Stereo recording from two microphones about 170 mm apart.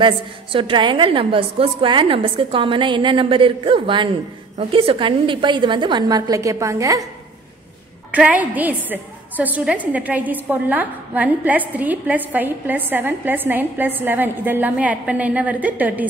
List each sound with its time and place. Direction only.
0.0 s a woman's voice: 30° right (ahead or behind)
8.1 s a woman's voice: 10° right (ahead or behind)